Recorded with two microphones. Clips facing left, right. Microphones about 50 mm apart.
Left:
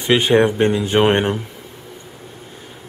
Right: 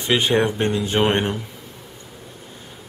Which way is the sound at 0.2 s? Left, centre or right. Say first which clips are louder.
Left 5 dB; centre.